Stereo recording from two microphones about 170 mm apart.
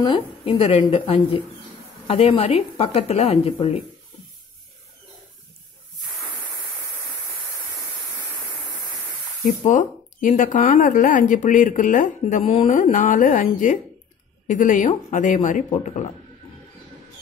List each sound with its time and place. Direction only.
0.0 s speech: 30° left (ahead or behind)
9.6 s speech: 45° left (ahead or behind)